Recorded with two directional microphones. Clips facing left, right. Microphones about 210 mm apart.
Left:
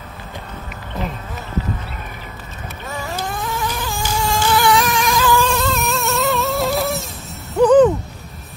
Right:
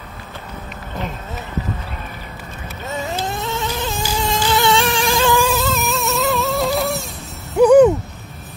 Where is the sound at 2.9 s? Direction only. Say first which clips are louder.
Right 2 dB; 20° right (ahead or behind).